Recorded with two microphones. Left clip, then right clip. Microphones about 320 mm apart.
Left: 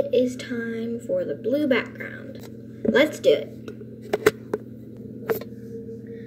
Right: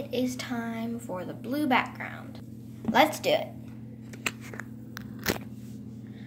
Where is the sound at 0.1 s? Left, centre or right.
Centre.